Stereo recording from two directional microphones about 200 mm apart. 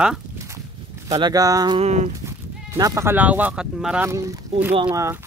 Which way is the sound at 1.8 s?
35° right (ahead or behind).